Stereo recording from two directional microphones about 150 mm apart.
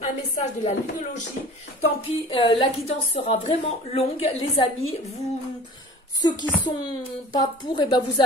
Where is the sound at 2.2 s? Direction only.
35° left (ahead or behind).